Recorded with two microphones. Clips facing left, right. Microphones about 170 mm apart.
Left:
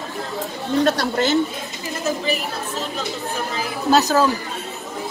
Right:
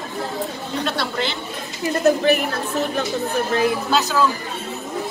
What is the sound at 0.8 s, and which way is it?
Speech, 40° left (ahead or behind).